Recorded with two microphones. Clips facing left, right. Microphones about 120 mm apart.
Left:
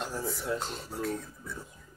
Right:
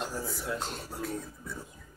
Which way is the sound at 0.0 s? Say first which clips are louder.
Left 1 dB; centre (ahead or behind).